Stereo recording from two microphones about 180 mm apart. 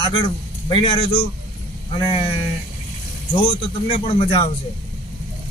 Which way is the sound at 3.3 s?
30° left (ahead or behind).